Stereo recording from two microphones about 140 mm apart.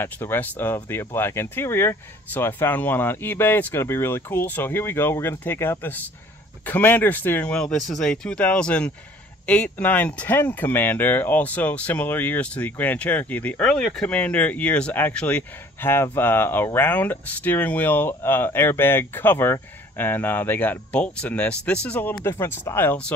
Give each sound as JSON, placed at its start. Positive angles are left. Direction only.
{"t": 0.0, "sound": "speech", "side_deg": 15}